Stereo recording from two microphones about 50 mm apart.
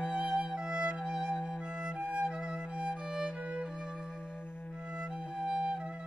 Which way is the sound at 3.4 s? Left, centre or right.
Right.